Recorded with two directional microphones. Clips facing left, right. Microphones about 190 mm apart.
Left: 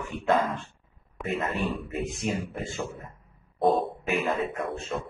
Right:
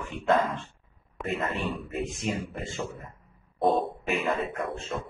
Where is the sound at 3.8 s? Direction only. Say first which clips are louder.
Left 1 dB; centre (ahead or behind).